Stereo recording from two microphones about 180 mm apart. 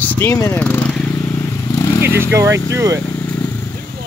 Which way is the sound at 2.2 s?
15° right (ahead or behind).